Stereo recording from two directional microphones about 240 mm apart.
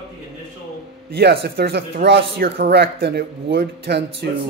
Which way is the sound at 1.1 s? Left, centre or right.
Right.